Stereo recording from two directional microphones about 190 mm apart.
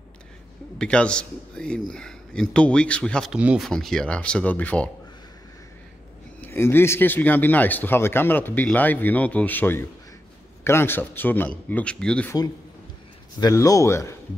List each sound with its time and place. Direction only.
0.7 s speech: 5° left (ahead or behind)
6.4 s speech: 10° left (ahead or behind)
13.4 s speech: 20° left (ahead or behind)